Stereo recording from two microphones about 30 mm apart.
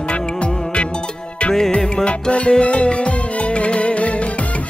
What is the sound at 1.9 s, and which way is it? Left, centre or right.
Music, left.